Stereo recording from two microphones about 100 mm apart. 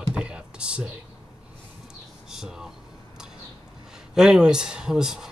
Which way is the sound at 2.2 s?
5° right (ahead or behind).